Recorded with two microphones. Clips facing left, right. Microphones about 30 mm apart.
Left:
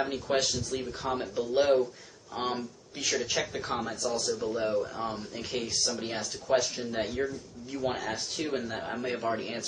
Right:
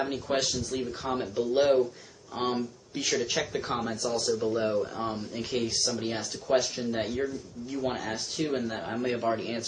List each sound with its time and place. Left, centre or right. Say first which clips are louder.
0.0 s speech: even; centre
4.5 s speech: right 1 dB; centre
4.7 s speech: right 1 dB; centre